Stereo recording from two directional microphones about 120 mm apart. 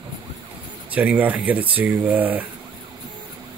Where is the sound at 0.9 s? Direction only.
10° right (ahead or behind).